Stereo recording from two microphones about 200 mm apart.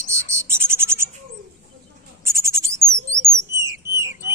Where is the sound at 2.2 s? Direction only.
15° right (ahead or behind).